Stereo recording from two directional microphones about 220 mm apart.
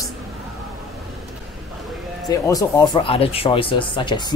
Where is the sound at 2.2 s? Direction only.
15° left (ahead or behind).